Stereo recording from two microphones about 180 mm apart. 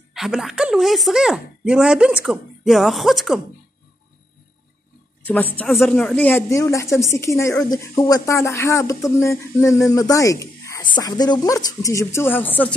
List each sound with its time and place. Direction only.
0.1 s speech: centre (ahead or behind)
5.2 s speech: 10° left (ahead or behind)